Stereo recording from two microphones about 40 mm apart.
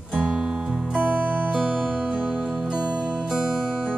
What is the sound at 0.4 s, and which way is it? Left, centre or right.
Music, centre.